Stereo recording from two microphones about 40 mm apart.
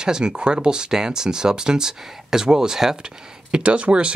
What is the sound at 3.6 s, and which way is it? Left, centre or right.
Speech, right.